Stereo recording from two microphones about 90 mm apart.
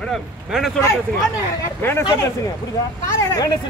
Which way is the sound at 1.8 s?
30° left (ahead or behind).